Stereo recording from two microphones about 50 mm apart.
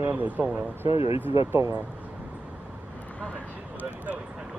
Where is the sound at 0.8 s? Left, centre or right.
Right.